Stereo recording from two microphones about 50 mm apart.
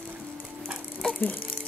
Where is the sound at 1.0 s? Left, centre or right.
Centre.